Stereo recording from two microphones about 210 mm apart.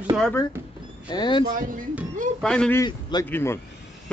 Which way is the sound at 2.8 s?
20° left (ahead or behind).